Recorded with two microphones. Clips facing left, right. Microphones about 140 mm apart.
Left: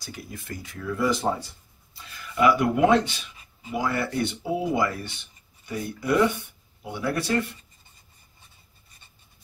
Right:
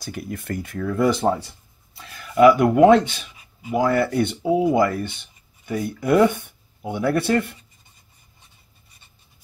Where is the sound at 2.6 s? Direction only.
50° right (ahead or behind).